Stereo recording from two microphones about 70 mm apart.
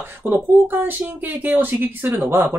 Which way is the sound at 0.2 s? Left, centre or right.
Right.